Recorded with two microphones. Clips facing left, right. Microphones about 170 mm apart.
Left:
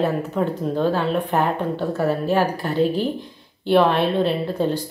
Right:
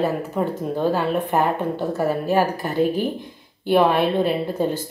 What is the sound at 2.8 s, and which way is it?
Speech, 50° right (ahead or behind).